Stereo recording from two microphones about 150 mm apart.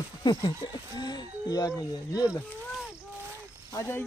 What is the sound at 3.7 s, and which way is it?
Speech, 20° left (ahead or behind).